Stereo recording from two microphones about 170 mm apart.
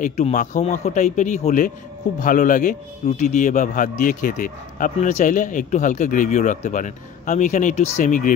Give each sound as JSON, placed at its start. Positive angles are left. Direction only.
{"t": 0.0, "sound": "a man's voice", "side_deg": 45}